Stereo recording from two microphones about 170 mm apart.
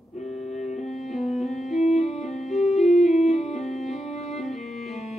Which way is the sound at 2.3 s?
Centre (ahead or behind).